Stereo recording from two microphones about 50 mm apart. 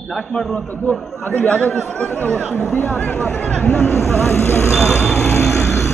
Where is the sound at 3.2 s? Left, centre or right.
Left.